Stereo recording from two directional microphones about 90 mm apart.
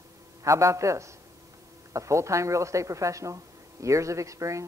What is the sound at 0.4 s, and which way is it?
Speech, 35° right (ahead or behind).